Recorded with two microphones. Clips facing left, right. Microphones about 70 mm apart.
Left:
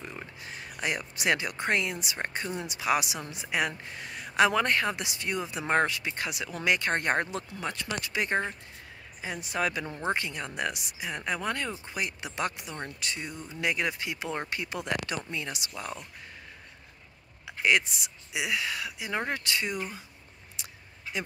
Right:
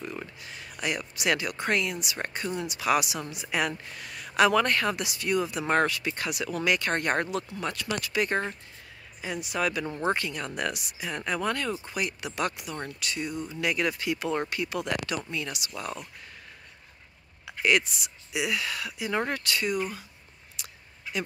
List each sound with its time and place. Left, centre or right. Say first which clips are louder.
0.0 s a sound: right 4 dB; centre
0.4 s speech: even; left; by 8.5 s centre
9.4 s speech: right 1 dB; left
9.8 s speech: right 3 dB; centre
10.1 s speech: right 1 dB; centre
13.3 s speech: right 7 dB; centre
13.6 s speech: right 1 dB; left
15.7 s speech: right 2 dB; centre
17.5 s speech: right 1 dB; left
20.6 s a sound: right 1 dB; left